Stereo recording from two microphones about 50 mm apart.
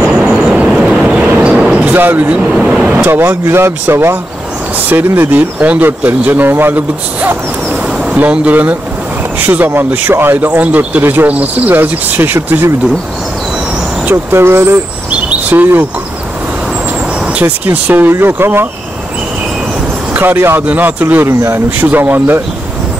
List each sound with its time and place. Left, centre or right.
0.0 s vehicle: centre
1.5 s basketball bounce: centre
2.0 s speech: right
3.1 s speech: right
7.8 s a sound: right
8.3 s speech: right
11.7 s speech: right
14.1 s speech: right
15.0 s chirp: right
17.6 s speech: right
20.2 s speech: right
20.6 s speech: right
21.3 s speech: right
21.6 s speech: right